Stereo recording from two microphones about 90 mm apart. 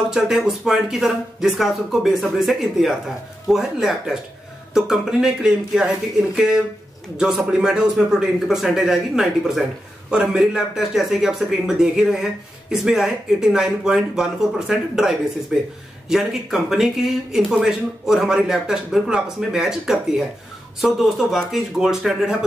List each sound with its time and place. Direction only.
0.1 s speech: 5° right (ahead or behind)